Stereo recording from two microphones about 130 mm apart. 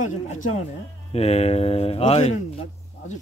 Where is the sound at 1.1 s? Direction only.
50° left (ahead or behind).